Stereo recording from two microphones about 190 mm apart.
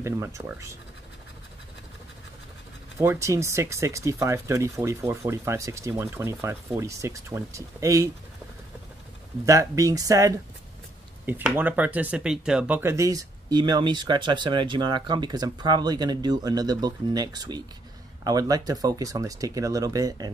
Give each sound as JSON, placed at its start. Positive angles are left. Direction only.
{"t": 0.0, "sound": "speech", "side_deg": -15}
{"t": 3.0, "sound": "speech", "side_deg": -15}
{"t": 9.5, "sound": "speech", "side_deg": -15}